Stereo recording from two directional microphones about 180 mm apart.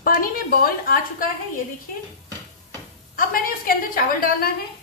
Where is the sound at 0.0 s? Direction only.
55° left (ahead or behind).